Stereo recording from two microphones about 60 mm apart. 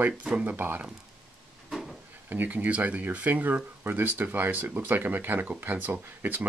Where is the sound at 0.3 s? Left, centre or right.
Right.